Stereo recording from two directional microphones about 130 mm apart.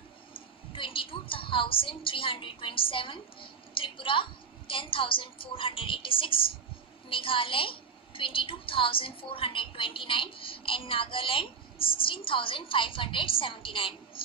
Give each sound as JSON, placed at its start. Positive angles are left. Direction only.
{"t": 0.3, "sound": "a woman's voice", "side_deg": 45}